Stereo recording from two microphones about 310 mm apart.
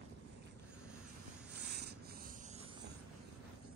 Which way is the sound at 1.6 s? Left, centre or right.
Right.